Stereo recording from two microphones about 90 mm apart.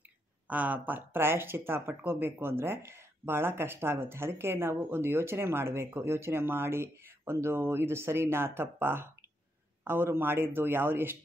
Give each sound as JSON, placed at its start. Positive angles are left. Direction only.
{"t": 0.5, "sound": "speech", "side_deg": -20}